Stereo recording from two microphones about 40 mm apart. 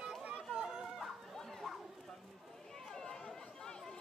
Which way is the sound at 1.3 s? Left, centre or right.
Centre.